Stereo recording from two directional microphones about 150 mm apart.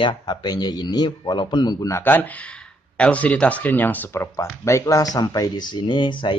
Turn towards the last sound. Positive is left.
turn(degrees=35)  # may be behind; listen again after turning